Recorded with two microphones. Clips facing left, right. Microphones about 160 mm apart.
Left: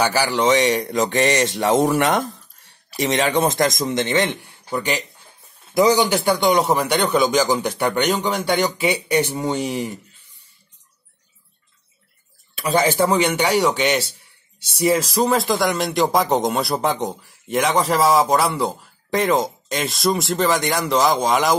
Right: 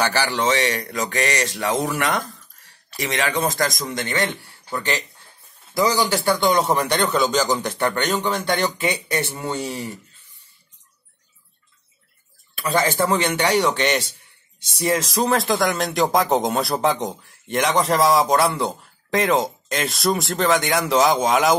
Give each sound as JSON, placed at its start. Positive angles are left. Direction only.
{"t": 0.0, "sound": "a man's voice", "side_deg": 10}
{"t": 12.5, "sound": "a man's voice", "side_deg": 15}